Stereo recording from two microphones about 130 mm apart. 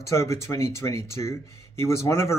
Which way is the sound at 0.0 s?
25° left (ahead or behind).